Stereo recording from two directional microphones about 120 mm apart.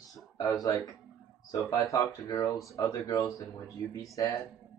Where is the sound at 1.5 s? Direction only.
30° left (ahead or behind).